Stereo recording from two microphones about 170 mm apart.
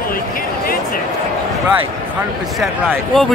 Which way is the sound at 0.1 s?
55° left (ahead or behind).